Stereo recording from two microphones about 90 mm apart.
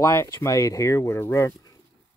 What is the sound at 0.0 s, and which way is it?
Speech, 30° left (ahead or behind).